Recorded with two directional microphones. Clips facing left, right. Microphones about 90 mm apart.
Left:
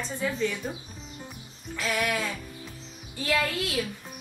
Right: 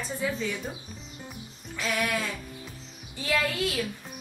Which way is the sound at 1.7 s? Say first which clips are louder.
Left 1 dB; centre (ahead or behind).